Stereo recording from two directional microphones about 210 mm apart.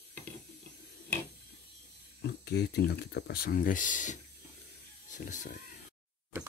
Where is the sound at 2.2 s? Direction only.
50° left (ahead or behind); by 5.5 s 35° left (ahead or behind).